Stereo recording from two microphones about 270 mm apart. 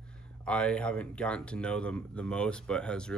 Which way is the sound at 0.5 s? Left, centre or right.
Centre.